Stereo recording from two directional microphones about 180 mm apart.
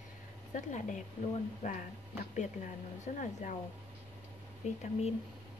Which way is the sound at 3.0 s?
45° left (ahead or behind).